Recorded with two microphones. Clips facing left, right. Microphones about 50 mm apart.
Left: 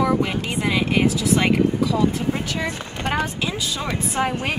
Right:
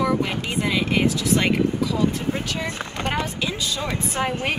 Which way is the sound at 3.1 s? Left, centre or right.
Centre.